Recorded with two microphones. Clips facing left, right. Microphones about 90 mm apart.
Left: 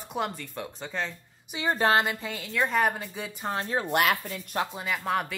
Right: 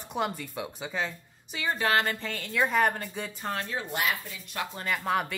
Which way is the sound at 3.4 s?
25° left (ahead or behind).